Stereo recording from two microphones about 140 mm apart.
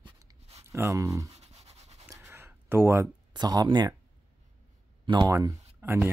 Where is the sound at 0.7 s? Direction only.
20° right (ahead or behind).